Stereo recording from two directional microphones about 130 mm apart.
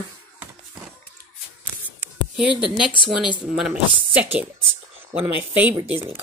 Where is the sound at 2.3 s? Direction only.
5° right (ahead or behind).